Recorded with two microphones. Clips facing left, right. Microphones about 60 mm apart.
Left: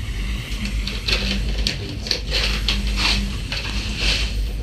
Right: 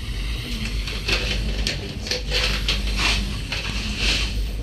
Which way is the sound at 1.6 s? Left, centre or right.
Right.